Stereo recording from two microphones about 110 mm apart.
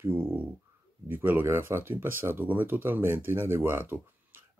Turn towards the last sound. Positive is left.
turn(degrees=-20)  # may be behind; listen again after turning